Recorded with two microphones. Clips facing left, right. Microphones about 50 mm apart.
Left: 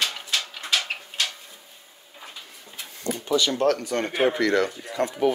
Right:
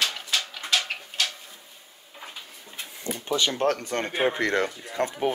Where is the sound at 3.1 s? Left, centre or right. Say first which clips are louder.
Left 3 dB; right.